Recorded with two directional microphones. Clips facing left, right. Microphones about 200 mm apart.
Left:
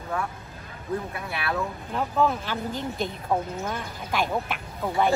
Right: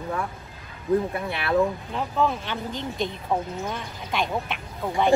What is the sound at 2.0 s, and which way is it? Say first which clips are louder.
Speech: left 2 dB; 5° left (ahead or behind).